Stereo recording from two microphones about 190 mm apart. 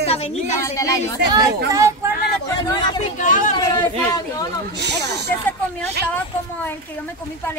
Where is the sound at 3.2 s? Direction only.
45° left (ahead or behind).